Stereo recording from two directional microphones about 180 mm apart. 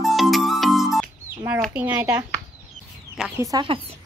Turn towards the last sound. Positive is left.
turn(degrees=-20)  # may be behind; listen again after turning